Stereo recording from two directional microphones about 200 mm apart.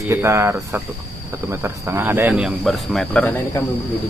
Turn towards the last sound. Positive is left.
turn(degrees=5)  # may be behind; listen again after turning